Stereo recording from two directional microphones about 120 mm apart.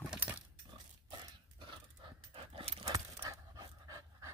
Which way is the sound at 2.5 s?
55° right (ahead or behind).